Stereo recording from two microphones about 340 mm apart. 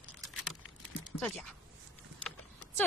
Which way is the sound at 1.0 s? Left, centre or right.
Centre.